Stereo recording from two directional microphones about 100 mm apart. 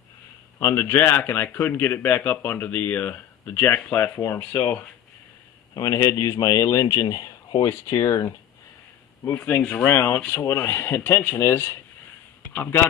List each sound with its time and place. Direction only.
0.6 s a man's voice: 20° left (ahead or behind)
5.8 s speech: 30° left (ahead or behind)
9.2 s a man's voice: 20° left (ahead or behind)
9.8 s a man's voice: 25° left (ahead or behind)